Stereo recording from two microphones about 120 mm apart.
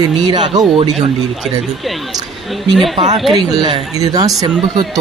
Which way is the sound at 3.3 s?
35° right (ahead or behind).